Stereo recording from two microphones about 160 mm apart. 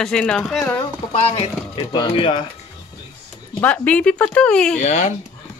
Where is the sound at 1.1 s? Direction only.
40° left (ahead or behind).